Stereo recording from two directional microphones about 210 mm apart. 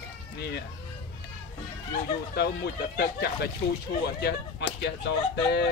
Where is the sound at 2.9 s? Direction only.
50° left (ahead or behind).